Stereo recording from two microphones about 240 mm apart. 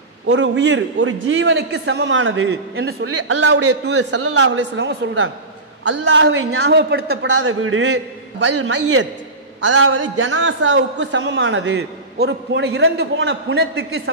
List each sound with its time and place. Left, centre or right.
0.3 s a man's voice: right
7.4 s a man's voice: right